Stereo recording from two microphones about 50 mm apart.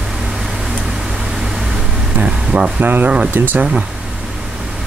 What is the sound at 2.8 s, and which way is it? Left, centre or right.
Speech, right.